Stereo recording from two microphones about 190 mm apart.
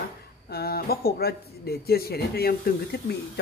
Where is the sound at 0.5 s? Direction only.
55° left (ahead or behind).